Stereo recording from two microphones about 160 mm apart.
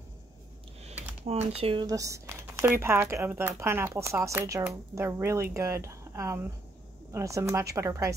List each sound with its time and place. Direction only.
1.2 s speech: 40° right (ahead or behind); by 8.1 s 20° right (ahead or behind)